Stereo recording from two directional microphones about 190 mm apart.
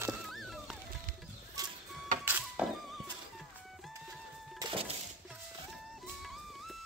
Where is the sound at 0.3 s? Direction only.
Centre (ahead or behind).